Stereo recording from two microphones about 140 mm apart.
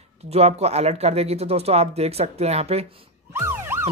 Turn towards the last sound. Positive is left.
turn(degrees=-15)  # may be behind; listen again after turning